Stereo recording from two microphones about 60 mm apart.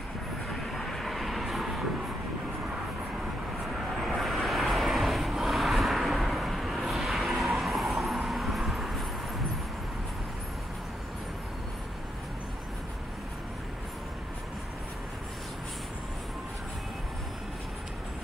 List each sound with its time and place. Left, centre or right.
0.5 s vehicle: centre
3.7 s vehicle: centre